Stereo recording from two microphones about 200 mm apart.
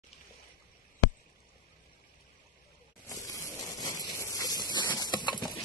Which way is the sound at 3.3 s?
15° left (ahead or behind).